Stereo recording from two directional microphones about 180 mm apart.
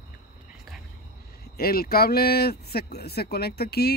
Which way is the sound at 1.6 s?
55° left (ahead or behind).